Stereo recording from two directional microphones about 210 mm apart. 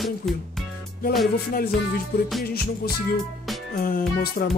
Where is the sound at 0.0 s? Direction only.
Centre (ahead or behind).